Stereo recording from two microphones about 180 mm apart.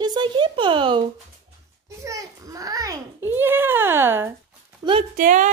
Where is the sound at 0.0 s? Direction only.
25° right (ahead or behind).